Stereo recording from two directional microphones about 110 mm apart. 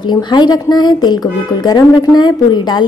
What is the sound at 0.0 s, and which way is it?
A woman's voice, 45° left (ahead or behind).